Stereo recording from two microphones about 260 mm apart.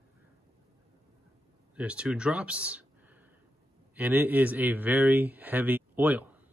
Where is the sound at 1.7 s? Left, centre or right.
Centre.